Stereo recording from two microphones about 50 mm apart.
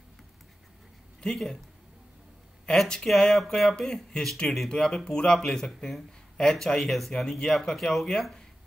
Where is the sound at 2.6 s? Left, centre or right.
Centre.